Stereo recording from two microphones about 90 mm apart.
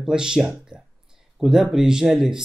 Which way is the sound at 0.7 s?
10° right (ahead or behind).